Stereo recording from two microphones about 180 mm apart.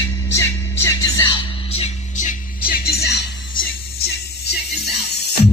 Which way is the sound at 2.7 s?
60° left (ahead or behind).